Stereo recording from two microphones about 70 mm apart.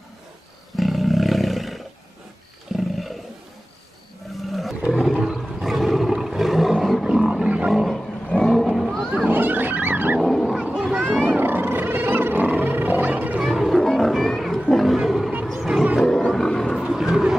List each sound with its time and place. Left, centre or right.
0.7 s roar: centre
4.4 s roar: centre
7.7 s roaring cats: centre
8.4 s vehicle: centre
9.3 s wild animals: right
10.2 s wild animals: centre
10.8 s a sound: centre
11.2 s wild animals: right
13.4 s wild animals: centre
15.0 s roaring cats: centre
16.3 s roaring cats: centre
16.8 s a sound: centre